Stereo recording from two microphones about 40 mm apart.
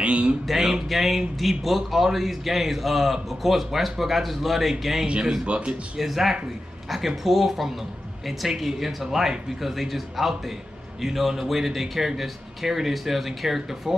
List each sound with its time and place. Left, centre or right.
0.0 s music: right
0.5 s a man's voice: centre
5.2 s a man's voice: centre
5.5 s speech: right
5.9 s a man's voice: centre